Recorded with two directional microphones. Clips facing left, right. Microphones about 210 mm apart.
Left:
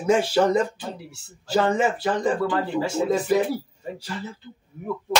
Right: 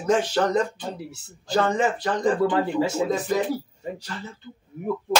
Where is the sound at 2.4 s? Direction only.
20° right (ahead or behind).